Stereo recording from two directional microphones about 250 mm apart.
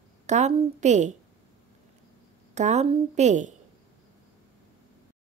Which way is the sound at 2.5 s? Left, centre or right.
Right.